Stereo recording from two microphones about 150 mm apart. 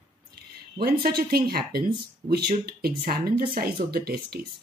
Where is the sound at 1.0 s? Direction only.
90° right.